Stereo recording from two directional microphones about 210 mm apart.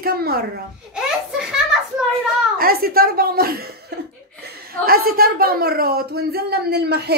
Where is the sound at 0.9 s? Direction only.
5° right (ahead or behind).